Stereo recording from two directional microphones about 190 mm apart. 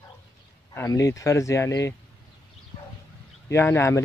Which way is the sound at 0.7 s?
15° left (ahead or behind).